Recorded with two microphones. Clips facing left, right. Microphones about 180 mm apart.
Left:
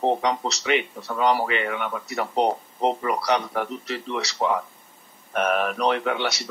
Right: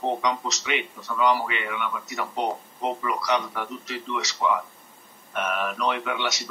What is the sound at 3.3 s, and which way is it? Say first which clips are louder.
A man's voice: left 3 dB; 50° left (ahead or behind).